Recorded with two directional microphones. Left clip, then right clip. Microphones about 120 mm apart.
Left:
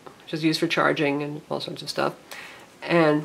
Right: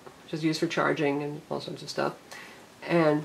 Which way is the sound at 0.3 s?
25° left (ahead or behind).